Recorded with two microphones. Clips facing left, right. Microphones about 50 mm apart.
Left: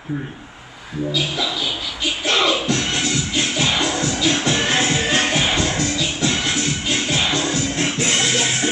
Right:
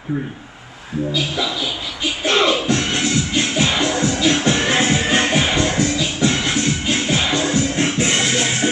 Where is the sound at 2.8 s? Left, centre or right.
Centre.